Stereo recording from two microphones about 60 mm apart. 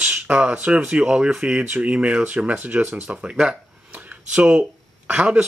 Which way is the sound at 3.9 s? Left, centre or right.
Right.